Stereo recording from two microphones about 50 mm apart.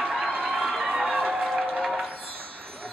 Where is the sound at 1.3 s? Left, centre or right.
Centre.